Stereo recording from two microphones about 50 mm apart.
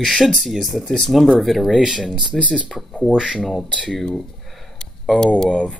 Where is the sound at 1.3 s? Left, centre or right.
Centre.